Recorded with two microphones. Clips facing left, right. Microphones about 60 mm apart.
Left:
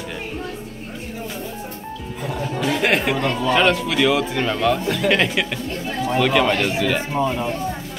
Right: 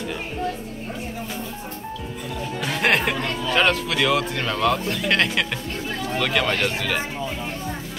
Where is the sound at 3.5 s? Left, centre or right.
Centre.